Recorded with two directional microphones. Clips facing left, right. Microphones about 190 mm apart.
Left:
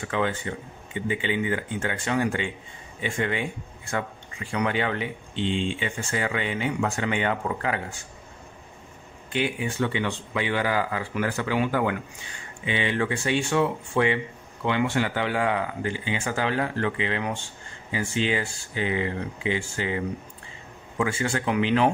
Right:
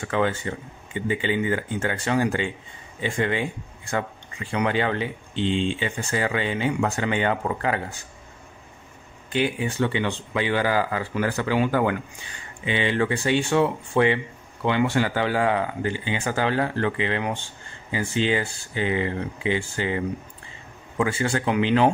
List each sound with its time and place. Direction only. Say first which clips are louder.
0.1 s speech: right 3 dB; 40° right (ahead or behind)
4.5 s speech: right 2 dB; 30° right (ahead or behind)
9.3 s speech: right 3 dB; 30° right (ahead or behind)
21.0 s speech: right 2 dB; 35° right (ahead or behind)